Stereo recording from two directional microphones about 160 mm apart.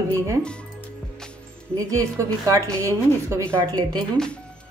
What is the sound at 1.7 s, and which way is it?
A woman's voice, 20° right (ahead or behind).